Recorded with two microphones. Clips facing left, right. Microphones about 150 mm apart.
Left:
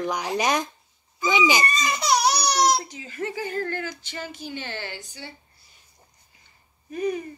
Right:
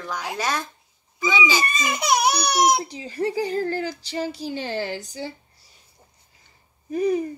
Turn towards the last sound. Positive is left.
turn(degrees=-35)  # may be behind; listen again after turning